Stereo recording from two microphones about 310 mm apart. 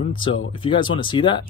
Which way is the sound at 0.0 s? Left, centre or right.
Centre.